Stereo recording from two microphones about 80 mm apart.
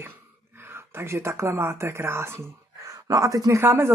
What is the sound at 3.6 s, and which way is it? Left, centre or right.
Speech, right.